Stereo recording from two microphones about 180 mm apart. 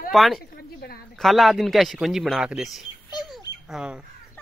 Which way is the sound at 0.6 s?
60° left (ahead or behind).